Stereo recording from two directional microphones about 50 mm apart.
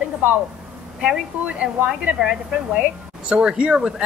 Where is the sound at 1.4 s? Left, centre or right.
Right.